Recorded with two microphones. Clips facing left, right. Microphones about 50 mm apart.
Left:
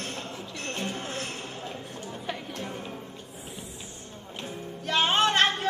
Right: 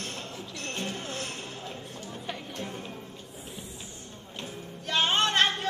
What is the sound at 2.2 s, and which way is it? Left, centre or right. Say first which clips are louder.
Music: left 2 dB; centre.